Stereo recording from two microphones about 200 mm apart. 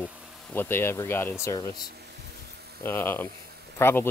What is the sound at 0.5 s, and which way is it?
Speech, 10° left (ahead or behind).